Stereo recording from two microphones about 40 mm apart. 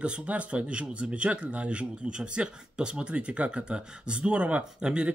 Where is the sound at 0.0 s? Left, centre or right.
Right.